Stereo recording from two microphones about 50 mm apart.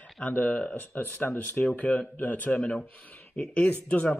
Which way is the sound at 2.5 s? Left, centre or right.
Centre.